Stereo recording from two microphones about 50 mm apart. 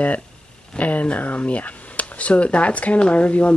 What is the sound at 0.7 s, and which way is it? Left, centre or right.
Speech, left.